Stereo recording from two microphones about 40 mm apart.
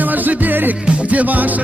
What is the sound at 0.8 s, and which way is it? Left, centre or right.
Music, right.